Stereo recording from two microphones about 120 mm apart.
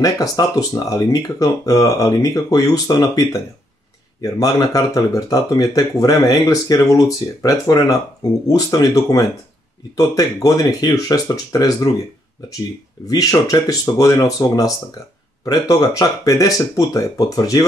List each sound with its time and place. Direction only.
0.0 s speech: 30° left (ahead or behind)
13.1 s speech: 30° left (ahead or behind)